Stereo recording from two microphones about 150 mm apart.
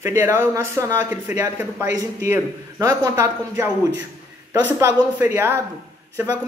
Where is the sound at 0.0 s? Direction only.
15° right (ahead or behind).